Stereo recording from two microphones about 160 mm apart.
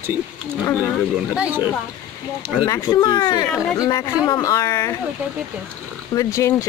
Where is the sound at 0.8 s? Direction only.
5° right (ahead or behind).